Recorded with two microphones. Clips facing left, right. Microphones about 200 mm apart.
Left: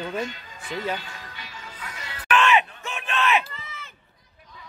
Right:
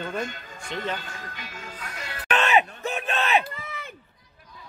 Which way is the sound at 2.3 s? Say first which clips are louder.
Left 1 dB; 40° right (ahead or behind).